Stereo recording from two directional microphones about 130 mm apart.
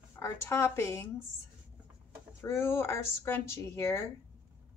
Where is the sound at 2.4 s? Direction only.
20° left (ahead or behind).